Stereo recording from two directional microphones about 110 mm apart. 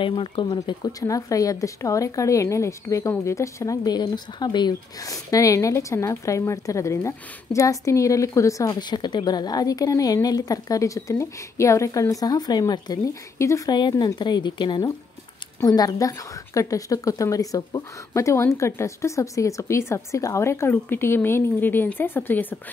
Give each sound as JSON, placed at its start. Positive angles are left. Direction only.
{"t": 0.0, "sound": "speech", "side_deg": 50}
{"t": 0.7, "sound": "a woman's voice", "side_deg": 35}
{"t": 8.6, "sound": "speech", "side_deg": 40}
{"t": 13.7, "sound": "a woman's voice", "side_deg": 40}